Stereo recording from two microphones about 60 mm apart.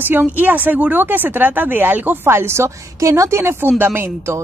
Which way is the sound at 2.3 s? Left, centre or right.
Right.